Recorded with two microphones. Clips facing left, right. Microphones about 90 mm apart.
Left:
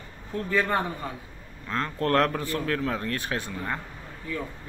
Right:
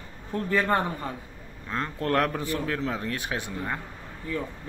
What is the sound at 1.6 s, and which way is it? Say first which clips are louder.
A man's voice: left 2 dB; 10° right (ahead or behind).